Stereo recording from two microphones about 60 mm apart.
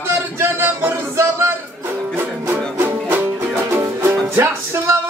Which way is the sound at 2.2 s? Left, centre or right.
Right.